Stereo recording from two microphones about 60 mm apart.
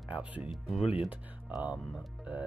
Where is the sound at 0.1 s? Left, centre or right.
Right.